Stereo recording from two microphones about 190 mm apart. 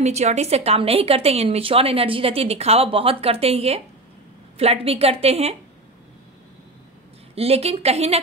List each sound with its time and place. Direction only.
0.0 s a woman's voice: 35° right (ahead or behind)
7.3 s a woman's voice: 30° right (ahead or behind)